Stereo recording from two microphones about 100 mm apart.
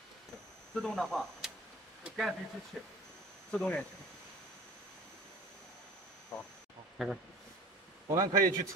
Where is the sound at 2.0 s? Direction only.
Centre (ahead or behind).